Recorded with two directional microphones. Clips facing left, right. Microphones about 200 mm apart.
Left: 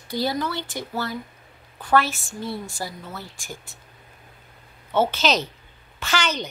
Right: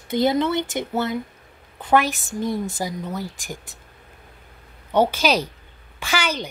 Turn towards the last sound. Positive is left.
turn(degrees=-10)  # may be behind; listen again after turning